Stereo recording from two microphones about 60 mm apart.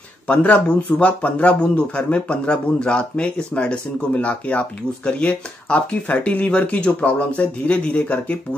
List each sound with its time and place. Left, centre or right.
0.3 s a man's voice: left